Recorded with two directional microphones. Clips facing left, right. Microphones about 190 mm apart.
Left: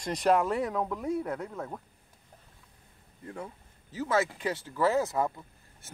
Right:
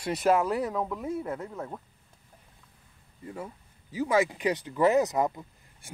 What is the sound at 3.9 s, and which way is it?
Speech, 15° right (ahead or behind).